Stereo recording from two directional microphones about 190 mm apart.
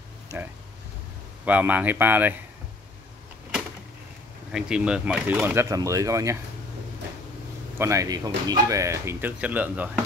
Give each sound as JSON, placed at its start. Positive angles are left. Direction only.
{"t": 1.4, "sound": "speech", "side_deg": -10}
{"t": 4.5, "sound": "speech", "side_deg": -5}
{"t": 7.7, "sound": "a man's voice", "side_deg": -15}